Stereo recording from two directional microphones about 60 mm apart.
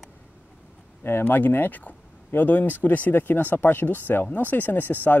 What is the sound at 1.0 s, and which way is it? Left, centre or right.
Speech, left.